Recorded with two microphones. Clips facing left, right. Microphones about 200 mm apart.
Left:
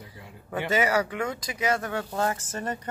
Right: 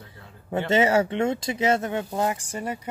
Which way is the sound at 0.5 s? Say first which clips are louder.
Right 4 dB; 25° right (ahead or behind).